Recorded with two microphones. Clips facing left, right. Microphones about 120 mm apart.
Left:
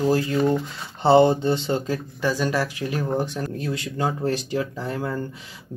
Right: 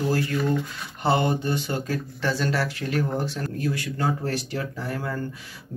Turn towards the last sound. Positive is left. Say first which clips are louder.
# left 2 dB
turn(degrees=20)  # may be behind; listen again after turning